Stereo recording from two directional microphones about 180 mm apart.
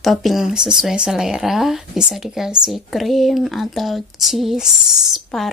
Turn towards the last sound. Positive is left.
turn(degrees=0)  # may be behind; listen again after turning